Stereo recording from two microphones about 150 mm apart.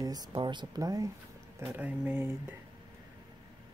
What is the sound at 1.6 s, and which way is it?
Speech, 10° right (ahead or behind).